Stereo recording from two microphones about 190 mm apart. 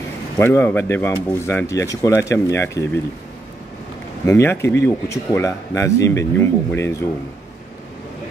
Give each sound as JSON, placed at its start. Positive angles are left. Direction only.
{"t": 0.4, "sound": "speech", "side_deg": 10}
{"t": 4.3, "sound": "speech", "side_deg": 15}